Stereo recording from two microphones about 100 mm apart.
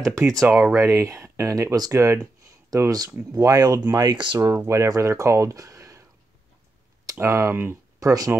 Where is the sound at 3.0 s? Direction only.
15° right (ahead or behind).